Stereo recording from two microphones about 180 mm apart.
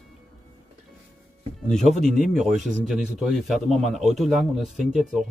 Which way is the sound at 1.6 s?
Centre (ahead or behind).